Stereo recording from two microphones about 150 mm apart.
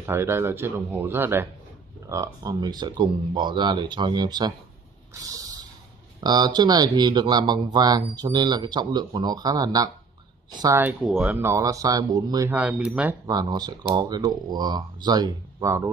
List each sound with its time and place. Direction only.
0.0 s speech: 15° right (ahead or behind)
5.3 s a sound: 25° right (ahead or behind)
6.2 s speech: 30° right (ahead or behind)
10.8 s speech: 10° right (ahead or behind); by 12.4 s 25° right (ahead or behind)
12.4 s speech: 10° right (ahead or behind)
13.3 s speech: 25° right (ahead or behind)